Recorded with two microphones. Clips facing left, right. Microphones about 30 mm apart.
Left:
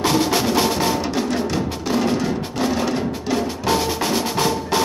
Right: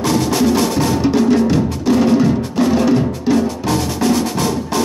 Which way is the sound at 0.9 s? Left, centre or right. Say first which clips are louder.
Right 8 dB; centre.